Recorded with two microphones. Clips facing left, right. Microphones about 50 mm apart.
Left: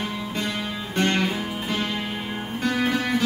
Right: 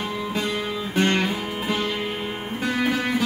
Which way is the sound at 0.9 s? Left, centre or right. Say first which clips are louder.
Right 1 dB; centre.